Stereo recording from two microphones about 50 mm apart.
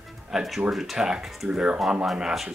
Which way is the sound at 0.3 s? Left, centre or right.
Centre.